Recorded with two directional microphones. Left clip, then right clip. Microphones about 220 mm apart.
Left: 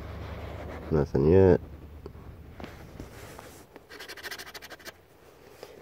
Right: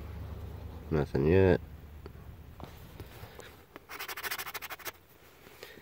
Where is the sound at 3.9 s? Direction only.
10° right (ahead or behind).